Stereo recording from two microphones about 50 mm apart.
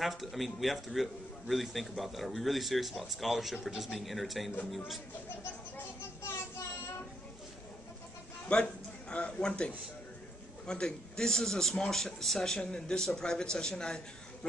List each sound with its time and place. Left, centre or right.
0.0 s a man's voice: centre
8.5 s a man's voice: left
10.7 s a man's voice: centre